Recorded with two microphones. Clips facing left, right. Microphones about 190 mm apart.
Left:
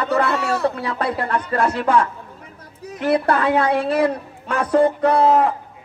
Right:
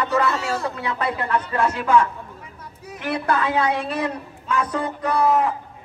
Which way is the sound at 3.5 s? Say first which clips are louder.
Left 4 dB; 60° left (ahead or behind).